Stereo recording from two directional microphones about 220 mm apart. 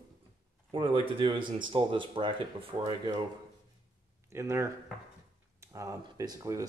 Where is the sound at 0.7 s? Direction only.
25° right (ahead or behind).